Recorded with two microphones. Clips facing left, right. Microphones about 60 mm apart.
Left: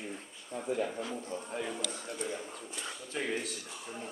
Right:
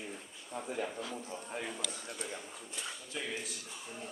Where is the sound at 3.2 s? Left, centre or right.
Left.